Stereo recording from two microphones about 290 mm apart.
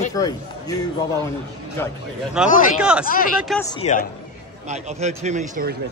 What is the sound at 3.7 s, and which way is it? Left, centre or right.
Speech, left.